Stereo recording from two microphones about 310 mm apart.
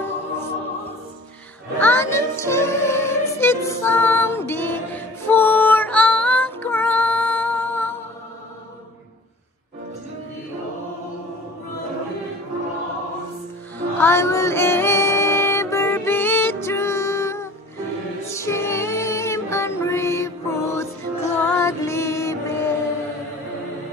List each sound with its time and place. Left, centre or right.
1.8 s music: centre
13.7 s music: centre